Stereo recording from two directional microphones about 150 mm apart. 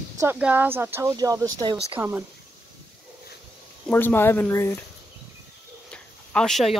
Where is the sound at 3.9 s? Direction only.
15° left (ahead or behind).